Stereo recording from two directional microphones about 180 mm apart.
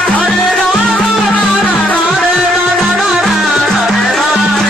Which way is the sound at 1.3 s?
10° left (ahead or behind).